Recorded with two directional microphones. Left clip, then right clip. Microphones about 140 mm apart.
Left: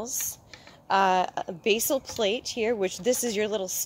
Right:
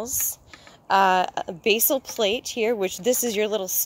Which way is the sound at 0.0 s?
55° right (ahead or behind).